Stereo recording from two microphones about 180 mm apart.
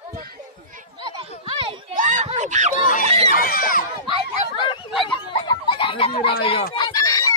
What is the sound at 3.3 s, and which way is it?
Speech, 50° left (ahead or behind).